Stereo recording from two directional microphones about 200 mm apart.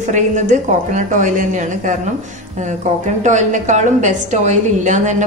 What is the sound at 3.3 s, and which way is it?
A woman's voice, 35° right (ahead or behind).